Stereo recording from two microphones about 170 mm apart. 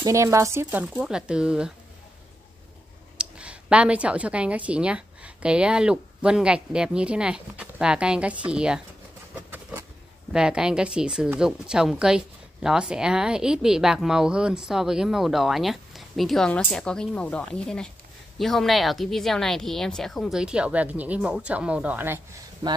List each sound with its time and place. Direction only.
0.0 s speech: 15° right (ahead or behind)
3.2 s speech: 5° right (ahead or behind)
9.3 s a sound: 10° right (ahead or behind)
10.3 s speech: 5° right (ahead or behind)
22.6 s speech: 25° right (ahead or behind)